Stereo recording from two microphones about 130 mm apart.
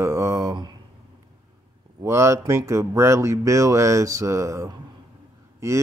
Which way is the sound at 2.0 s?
20° right (ahead or behind).